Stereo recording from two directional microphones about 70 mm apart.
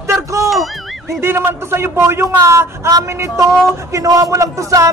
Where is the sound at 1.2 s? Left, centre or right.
Right.